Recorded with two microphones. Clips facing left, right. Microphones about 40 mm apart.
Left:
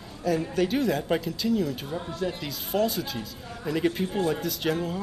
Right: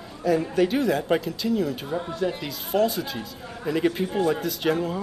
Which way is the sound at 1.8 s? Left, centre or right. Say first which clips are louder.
Right 4 dB; centre.